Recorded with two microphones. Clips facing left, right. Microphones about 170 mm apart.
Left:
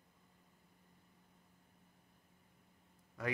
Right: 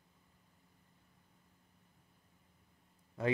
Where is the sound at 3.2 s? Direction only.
25° right (ahead or behind).